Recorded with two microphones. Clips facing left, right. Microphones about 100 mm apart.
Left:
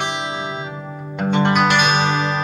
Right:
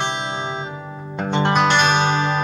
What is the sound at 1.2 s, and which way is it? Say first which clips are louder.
Music: left 2 dB; 10° left (ahead or behind).